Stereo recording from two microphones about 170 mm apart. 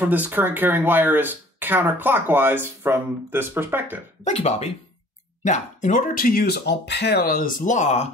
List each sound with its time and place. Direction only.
0.0 s speech: 10° right (ahead or behind)
4.2 s speech: 40° left (ahead or behind)